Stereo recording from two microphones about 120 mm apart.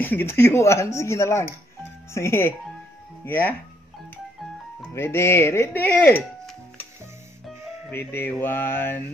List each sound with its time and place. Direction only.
0.0 s speech: 15° left (ahead or behind)
4.9 s speech: 20° left (ahead or behind)
7.9 s speech: 20° left (ahead or behind)